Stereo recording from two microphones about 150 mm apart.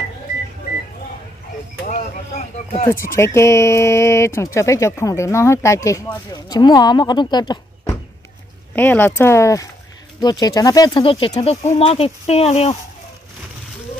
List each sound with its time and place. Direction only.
1.9 s a sound: 55° left (ahead or behind)
3.2 s speech: 15° left (ahead or behind)
8.7 s speech: 10° left (ahead or behind); by 12.7 s 45° left (ahead or behind)